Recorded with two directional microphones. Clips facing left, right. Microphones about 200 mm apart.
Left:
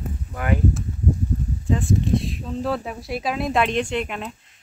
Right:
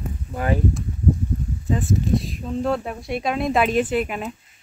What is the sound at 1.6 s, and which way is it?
Speech, centre (ahead or behind).